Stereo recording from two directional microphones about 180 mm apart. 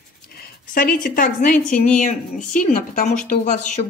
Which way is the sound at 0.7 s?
50° left (ahead or behind).